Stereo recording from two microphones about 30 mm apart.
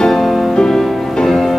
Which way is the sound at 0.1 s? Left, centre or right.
Centre.